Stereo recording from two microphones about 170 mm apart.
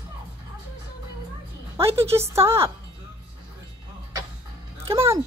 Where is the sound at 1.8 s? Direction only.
15° right (ahead or behind).